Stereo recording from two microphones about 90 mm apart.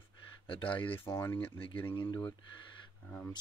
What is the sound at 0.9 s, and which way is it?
Speech, 30° left (ahead or behind).